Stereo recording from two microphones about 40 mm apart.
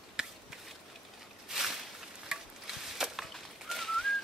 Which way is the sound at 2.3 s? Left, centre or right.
Centre.